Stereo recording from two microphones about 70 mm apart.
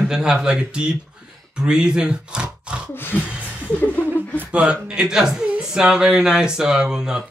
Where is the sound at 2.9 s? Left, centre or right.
Left.